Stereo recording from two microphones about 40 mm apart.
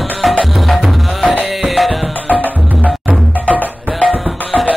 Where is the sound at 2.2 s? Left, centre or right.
Left.